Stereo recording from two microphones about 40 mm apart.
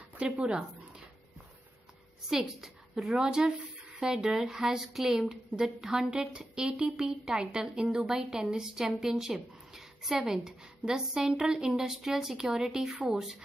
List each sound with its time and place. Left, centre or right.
0.2 s speech: right
2.2 s a woman's voice: centre
3.1 s speech: right; by 6.0 s centre
6.3 s speech: right